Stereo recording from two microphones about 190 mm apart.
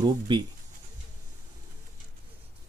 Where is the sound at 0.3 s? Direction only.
25° right (ahead or behind).